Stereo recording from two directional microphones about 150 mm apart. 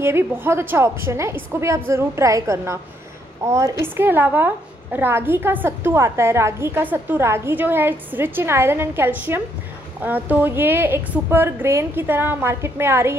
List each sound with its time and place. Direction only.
0.0 s a woman's voice: 15° right (ahead or behind)